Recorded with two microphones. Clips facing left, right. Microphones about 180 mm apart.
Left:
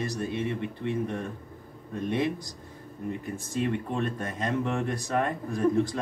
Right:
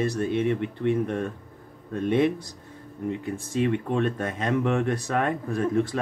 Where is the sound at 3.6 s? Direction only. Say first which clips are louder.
Right 4 dB; 65° right (ahead or behind).